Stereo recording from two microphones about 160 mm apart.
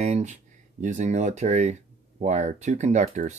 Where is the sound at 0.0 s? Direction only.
45° right (ahead or behind).